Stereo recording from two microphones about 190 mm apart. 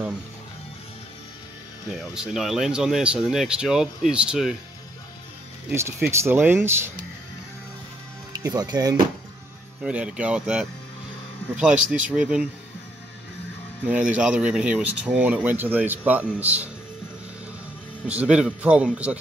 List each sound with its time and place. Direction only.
1.9 s speech: 5° right (ahead or behind)
5.7 s speech: 15° right (ahead or behind)
8.4 s speech: 20° right (ahead or behind)
9.8 s speech: 5° right (ahead or behind)
13.8 s speech: 5° right (ahead or behind)
18.0 s speech: 5° right (ahead or behind)